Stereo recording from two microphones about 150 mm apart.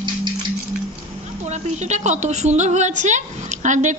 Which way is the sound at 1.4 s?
50° right (ahead or behind).